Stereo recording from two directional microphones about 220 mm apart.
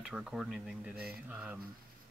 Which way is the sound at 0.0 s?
5° right (ahead or behind).